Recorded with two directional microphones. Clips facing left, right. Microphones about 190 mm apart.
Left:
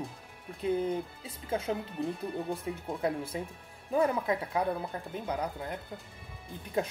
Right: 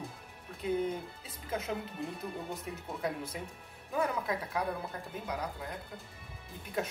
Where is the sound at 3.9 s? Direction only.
25° left (ahead or behind).